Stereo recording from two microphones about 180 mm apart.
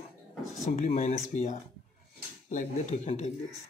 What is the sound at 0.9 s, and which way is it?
Speech, 40° left (ahead or behind).